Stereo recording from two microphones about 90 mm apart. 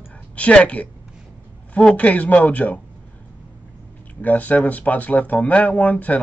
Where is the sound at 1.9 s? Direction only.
15° left (ahead or behind).